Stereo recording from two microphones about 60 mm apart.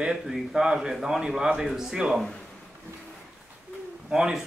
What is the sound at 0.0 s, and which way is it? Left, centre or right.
Speech, centre.